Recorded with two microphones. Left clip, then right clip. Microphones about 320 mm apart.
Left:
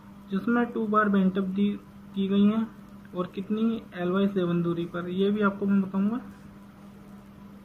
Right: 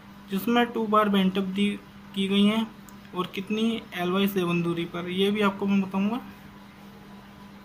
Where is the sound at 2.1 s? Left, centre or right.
Right.